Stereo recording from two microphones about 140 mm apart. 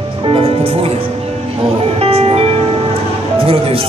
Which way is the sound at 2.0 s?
45° right (ahead or behind).